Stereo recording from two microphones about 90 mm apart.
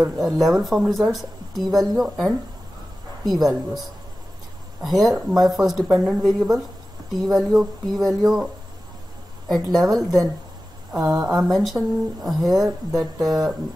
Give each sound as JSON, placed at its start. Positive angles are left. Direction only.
{"t": 0.0, "sound": "speech", "side_deg": 0}
{"t": 4.8, "sound": "speech", "side_deg": 0}
{"t": 9.5, "sound": "speech", "side_deg": 0}
{"t": 12.9, "sound": "speech", "side_deg": -45}